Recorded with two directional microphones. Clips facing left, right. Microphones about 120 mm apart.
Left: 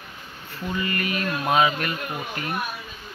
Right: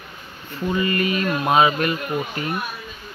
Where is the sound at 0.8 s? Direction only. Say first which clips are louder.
Right 5 dB; 25° right (ahead or behind).